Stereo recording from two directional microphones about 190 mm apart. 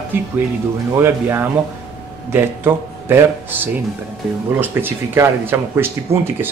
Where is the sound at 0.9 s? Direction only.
10° right (ahead or behind).